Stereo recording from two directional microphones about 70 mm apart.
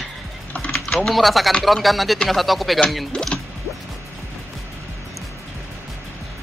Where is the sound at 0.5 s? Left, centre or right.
Centre.